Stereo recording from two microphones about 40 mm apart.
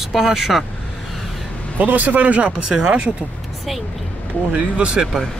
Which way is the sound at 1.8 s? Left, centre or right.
Right.